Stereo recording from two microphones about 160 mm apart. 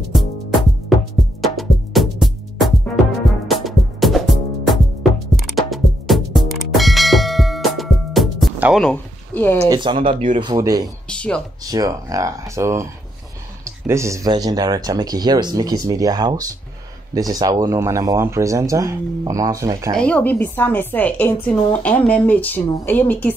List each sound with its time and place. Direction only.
0.1 s music: centre (ahead or behind)
8.8 s speech: 10° left (ahead or behind)
9.6 s speech: 25° right (ahead or behind)
11.1 s speech: 5° left (ahead or behind)
11.6 s speech: 25° right (ahead or behind)
13.8 s speech: 20° right (ahead or behind)
20.0 s a woman's voice: 10° left (ahead or behind)